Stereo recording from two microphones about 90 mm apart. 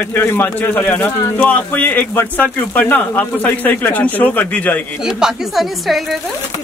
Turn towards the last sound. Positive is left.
turn(degrees=0)  # may be behind; listen again after turning